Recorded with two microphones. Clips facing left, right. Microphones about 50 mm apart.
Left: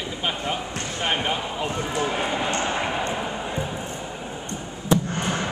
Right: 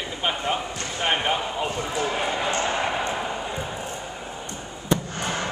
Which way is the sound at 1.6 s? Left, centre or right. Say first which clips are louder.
Left 1 dB; left.